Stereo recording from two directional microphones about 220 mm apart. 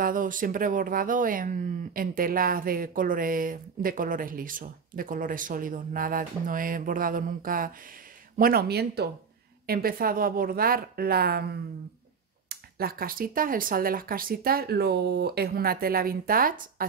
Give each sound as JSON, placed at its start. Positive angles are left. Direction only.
{"t": 0.0, "sound": "speech", "side_deg": -40}